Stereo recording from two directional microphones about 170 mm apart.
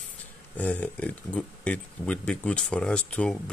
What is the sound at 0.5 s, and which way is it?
Speech, 10° left (ahead or behind).